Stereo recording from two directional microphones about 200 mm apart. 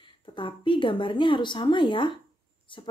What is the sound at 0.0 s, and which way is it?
Speech, 25° left (ahead or behind).